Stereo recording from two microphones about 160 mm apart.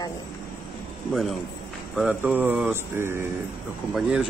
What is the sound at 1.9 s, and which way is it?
Speech, 10° right (ahead or behind).